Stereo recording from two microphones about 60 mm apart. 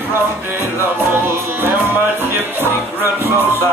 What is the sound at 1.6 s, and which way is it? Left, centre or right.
Music, right.